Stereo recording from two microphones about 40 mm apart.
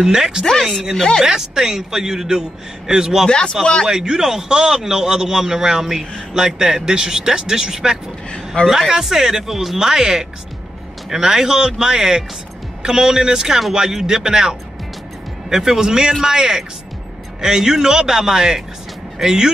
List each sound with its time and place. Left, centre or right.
0.0 s a man's voice: centre
0.9 s speech: centre
1.2 s a man's voice: centre
3.3 s speech: left
3.8 s a man's voice: centre